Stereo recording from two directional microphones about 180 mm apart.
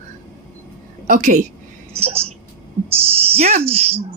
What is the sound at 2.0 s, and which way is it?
Speech, 35° right (ahead or behind).